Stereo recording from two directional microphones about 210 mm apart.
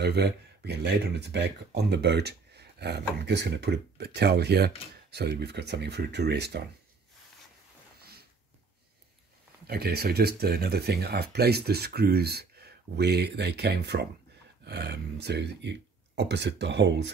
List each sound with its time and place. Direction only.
0.0 s speech: 50° right (ahead or behind)
9.7 s speech: 45° right (ahead or behind)